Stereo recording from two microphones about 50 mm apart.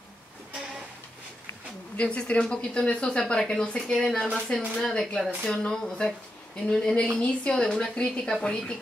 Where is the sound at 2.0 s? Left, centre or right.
Left.